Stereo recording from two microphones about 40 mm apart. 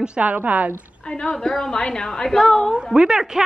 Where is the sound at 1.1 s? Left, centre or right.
Left.